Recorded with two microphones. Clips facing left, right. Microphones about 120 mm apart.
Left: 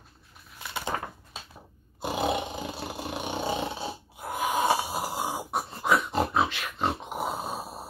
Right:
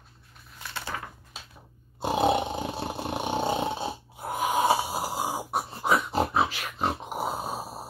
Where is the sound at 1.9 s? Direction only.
25° right (ahead or behind).